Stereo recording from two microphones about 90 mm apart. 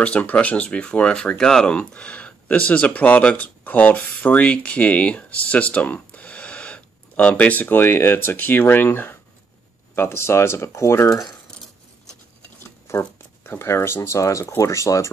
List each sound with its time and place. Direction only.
0.0 s speech: 15° left (ahead or behind); by 11.3 s 35° left (ahead or behind)
12.9 s speech: 30° left (ahead or behind)